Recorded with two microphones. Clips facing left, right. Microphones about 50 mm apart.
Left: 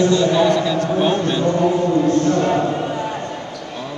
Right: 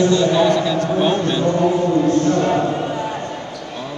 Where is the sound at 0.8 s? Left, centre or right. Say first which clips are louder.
Even; centre.